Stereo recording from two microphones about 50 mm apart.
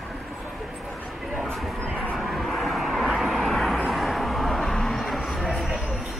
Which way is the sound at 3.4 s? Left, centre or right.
Centre.